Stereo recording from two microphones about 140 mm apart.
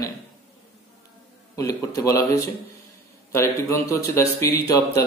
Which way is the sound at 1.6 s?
25° left (ahead or behind).